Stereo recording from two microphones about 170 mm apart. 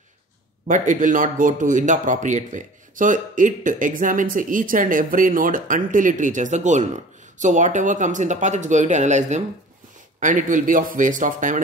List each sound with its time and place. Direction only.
0.7 s speech: 50° right (ahead or behind)